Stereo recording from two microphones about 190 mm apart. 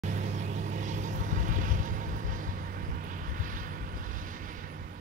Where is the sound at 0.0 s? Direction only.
40° right (ahead or behind).